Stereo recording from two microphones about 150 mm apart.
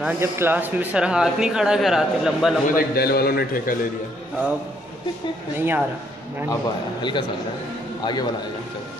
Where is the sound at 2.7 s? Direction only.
90° left.